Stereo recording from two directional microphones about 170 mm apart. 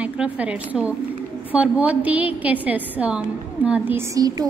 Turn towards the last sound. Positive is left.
turn(degrees=-20)  # may be behind; listen again after turning